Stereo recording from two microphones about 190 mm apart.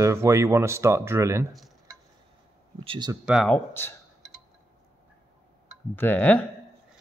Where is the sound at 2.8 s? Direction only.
30° right (ahead or behind).